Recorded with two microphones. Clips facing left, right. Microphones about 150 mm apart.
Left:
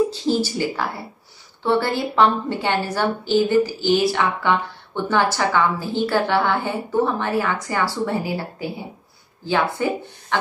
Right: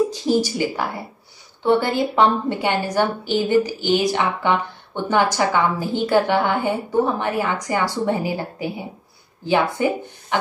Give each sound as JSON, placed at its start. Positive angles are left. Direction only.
{"t": 0.1, "sound": "a woman's voice", "side_deg": -15}